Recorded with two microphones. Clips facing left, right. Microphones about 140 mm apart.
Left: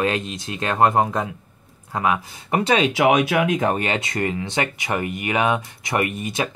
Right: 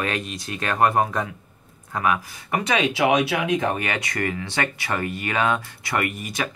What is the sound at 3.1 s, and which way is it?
Speech, 50° left (ahead or behind).